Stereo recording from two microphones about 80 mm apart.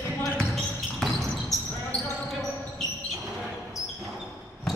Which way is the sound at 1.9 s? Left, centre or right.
Centre.